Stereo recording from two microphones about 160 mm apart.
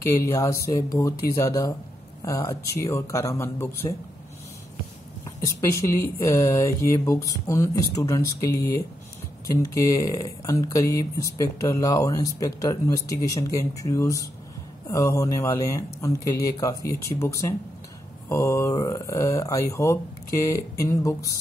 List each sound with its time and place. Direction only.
0.0 s speech: 20° left (ahead or behind)
5.9 s speech: 20° left (ahead or behind)